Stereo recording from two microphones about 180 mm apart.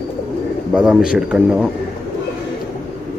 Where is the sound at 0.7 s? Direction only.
5° right (ahead or behind).